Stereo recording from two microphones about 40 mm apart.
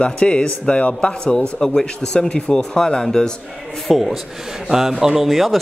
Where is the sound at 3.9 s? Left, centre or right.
Centre.